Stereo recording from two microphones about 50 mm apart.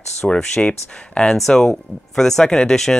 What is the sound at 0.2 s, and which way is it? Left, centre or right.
Speech, centre.